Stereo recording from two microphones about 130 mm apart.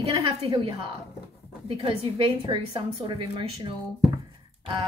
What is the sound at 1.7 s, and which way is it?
A woman's voice, 45° right (ahead or behind).